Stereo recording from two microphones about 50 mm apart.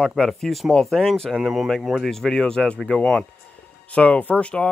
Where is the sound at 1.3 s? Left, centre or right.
Centre.